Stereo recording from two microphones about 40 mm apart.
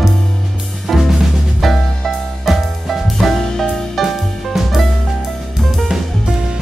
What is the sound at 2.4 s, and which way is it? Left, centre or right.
Music, centre.